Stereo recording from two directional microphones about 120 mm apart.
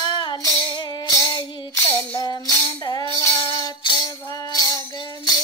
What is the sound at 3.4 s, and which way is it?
Music, 35° left (ahead or behind).